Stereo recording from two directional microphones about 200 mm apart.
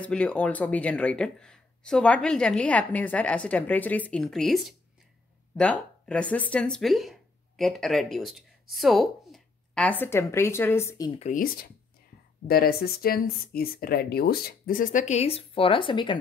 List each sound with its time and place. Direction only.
0.0 s speech: 5° left (ahead or behind)
11.1 s speech: 40° left (ahead or behind); by 16.2 s 25° left (ahead or behind)